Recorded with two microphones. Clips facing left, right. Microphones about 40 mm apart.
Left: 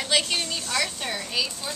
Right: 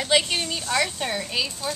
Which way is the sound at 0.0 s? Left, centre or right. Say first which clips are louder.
Right 3 dB; centre.